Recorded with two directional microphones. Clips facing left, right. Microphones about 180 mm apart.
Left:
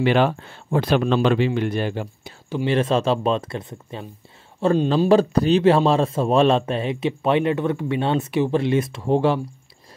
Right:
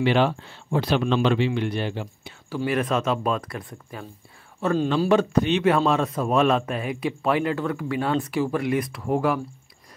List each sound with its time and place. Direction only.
0.0 s speech: 50° left (ahead or behind)
2.5 s a man's voice: 25° left (ahead or behind)